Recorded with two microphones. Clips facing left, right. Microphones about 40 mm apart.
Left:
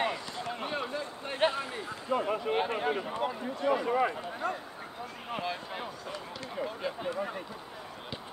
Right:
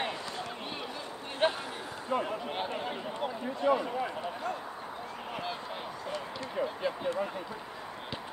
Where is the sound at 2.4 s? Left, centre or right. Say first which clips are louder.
Left 5 dB; centre.